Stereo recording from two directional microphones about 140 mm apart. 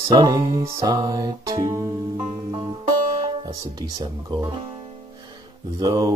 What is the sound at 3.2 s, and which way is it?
Speech, 30° right (ahead or behind).